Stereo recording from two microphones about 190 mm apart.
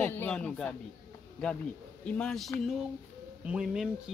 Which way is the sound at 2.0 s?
5° left (ahead or behind).